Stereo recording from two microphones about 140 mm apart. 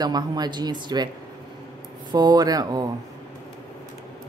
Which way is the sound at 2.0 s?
30° right (ahead or behind).